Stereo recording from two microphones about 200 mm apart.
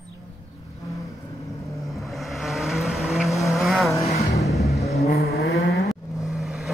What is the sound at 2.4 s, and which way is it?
Vehicle, centre (ahead or behind).